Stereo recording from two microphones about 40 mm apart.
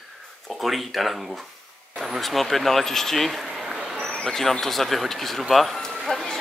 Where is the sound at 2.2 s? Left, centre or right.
Centre.